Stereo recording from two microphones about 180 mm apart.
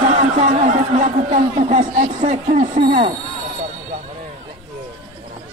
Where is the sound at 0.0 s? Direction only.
40° right (ahead or behind).